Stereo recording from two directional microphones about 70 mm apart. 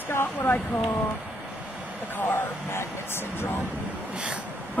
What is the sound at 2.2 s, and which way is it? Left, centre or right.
Speech, left.